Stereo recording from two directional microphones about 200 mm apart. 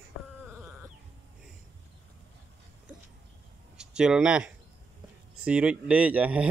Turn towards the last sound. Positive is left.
turn(degrees=-5)  # may be behind; listen again after turning